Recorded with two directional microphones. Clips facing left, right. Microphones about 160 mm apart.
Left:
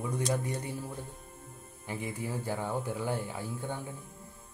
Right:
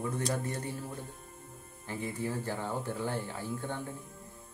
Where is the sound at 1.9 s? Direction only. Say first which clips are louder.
Right 1 dB; 15° left (ahead or behind).